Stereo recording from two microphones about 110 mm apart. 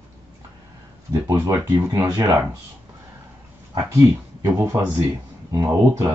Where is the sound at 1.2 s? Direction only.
25° right (ahead or behind).